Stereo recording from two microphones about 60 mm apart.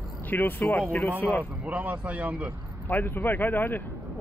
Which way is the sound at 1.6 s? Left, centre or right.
Right.